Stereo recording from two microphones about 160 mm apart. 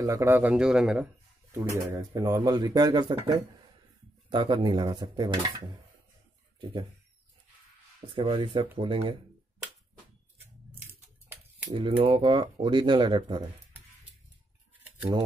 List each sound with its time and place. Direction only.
0.0 s speech: 20° right (ahead or behind)
1.5 s speech: 15° right (ahead or behind)
4.3 s speech: 30° right (ahead or behind)
6.6 s speech: 30° right (ahead or behind)
8.1 s speech: 30° right (ahead or behind)
11.7 s speech: 35° right (ahead or behind)
14.8 s a sound: 20° right (ahead or behind)